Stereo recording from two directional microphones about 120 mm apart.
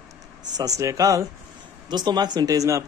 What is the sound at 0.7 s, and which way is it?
Speech, 30° right (ahead or behind).